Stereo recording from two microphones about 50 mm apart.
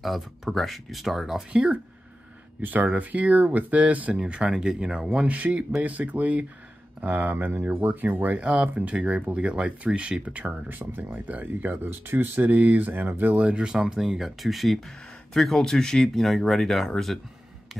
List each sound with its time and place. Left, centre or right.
0.0 s speech: centre
1.5 s speech: right
2.6 s speech: right
4.2 s speech: centre
10.8 s speech: right
11.8 s speech: right
13.7 s speech: centre